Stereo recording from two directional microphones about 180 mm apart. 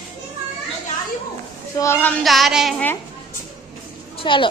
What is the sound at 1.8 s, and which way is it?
Speech, 10° left (ahead or behind).